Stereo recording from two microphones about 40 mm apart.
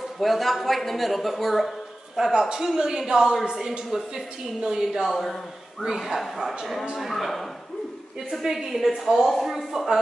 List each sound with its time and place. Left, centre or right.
0.2 s a woman's voice: centre
5.1 s a man's voice: centre
7.0 s speech: centre
8.3 s speech: centre
9.7 s speech: centre